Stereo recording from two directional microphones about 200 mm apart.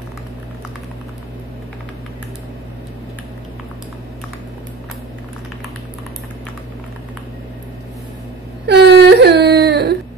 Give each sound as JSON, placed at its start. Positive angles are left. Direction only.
{"t": 8.6, "sound": "whimper", "side_deg": -55}